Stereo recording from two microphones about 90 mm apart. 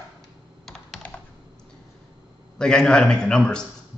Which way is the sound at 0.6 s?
5° left (ahead or behind).